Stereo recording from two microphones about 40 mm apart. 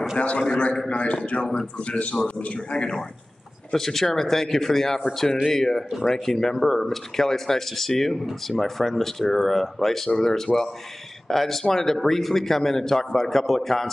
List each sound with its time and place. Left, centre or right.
0.8 s a man's voice: left
3.7 s speech: centre